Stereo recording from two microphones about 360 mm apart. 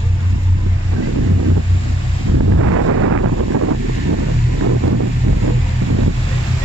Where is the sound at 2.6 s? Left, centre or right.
Right.